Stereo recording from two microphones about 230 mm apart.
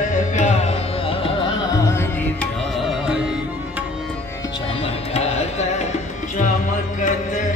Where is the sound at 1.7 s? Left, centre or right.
Centre.